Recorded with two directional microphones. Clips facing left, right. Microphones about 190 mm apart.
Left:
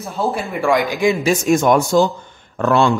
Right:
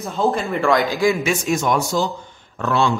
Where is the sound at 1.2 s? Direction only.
45° left (ahead or behind).